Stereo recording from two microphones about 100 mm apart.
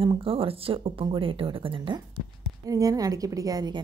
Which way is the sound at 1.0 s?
55° right (ahead or behind).